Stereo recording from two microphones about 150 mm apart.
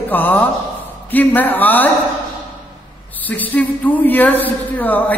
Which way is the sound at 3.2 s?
10° left (ahead or behind).